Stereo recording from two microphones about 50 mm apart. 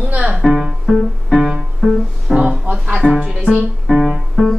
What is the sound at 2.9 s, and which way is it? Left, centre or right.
Music, centre.